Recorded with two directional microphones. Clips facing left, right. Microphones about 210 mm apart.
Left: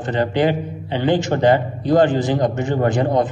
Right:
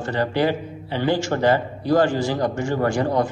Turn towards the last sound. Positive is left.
turn(degrees=20)  # may be behind; listen again after turning